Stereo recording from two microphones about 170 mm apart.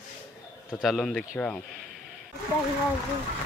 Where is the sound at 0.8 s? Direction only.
Centre (ahead or behind).